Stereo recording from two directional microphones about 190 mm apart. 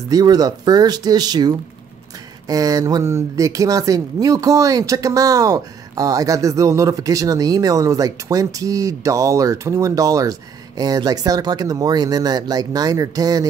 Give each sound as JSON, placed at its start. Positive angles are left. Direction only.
{"t": 0.1, "sound": "speech", "side_deg": -20}